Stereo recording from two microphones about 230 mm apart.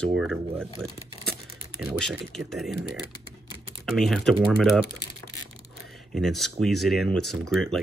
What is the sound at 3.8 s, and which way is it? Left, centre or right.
Speech, centre.